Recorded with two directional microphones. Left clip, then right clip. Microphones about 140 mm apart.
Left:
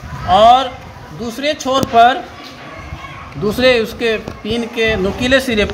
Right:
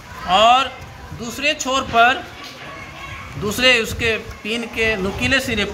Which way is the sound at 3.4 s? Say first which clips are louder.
Left 3 dB; 30° left (ahead or behind).